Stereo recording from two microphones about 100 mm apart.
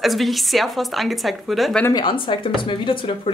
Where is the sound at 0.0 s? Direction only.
Centre (ahead or behind).